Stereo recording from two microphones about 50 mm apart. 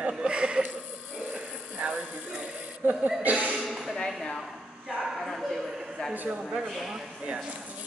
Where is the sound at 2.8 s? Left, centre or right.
Right.